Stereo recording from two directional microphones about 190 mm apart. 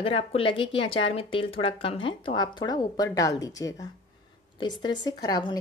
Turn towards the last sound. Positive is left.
turn(degrees=20)  # may be behind; listen again after turning